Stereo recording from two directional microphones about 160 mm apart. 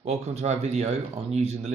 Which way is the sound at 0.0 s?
45° right (ahead or behind).